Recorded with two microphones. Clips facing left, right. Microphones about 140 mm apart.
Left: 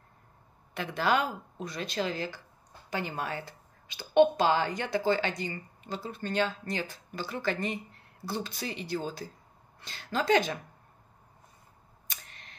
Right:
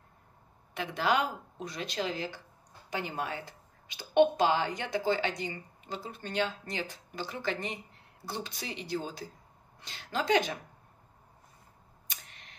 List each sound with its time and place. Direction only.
0.7 s a woman's voice: 15° right (ahead or behind)